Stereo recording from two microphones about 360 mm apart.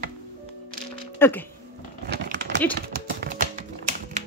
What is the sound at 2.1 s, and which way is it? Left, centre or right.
Crumpling, right.